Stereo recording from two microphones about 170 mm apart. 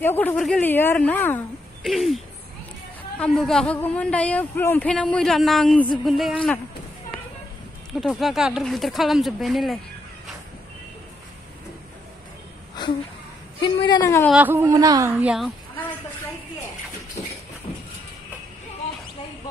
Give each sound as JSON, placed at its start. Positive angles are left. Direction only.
{"t": 0.0, "sound": "a woman's voice", "side_deg": 10}
{"t": 1.8, "sound": "a woman's voice", "side_deg": 0}
{"t": 8.0, "sound": "speech", "side_deg": 0}
{"t": 13.6, "sound": "a woman's voice", "side_deg": 25}
{"t": 14.3, "sound": "speech", "side_deg": -10}
{"t": 15.1, "sound": "speech", "side_deg": -5}